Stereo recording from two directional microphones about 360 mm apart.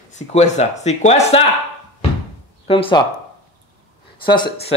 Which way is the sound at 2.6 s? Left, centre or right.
Centre.